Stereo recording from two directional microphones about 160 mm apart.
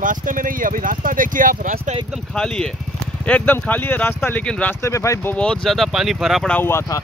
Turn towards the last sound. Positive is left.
turn(degrees=15)  # may be behind; listen again after turning